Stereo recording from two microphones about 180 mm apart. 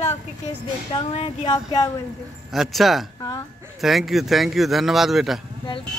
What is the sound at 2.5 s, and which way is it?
A man's voice, centre (ahead or behind).